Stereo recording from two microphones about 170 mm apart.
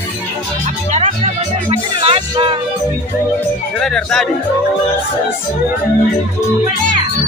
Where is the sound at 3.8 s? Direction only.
5° left (ahead or behind).